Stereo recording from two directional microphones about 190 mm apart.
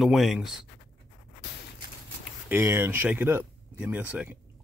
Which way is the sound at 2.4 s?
15° right (ahead or behind).